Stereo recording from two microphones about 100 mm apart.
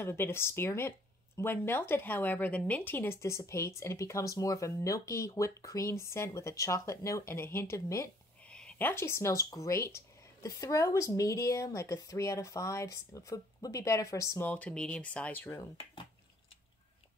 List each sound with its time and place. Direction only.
0.0 s speech: 25° left (ahead or behind)
8.5 s speech: 10° left (ahead or behind); by 14.5 s 30° left (ahead or behind)
14.5 s speech: 10° left (ahead or behind)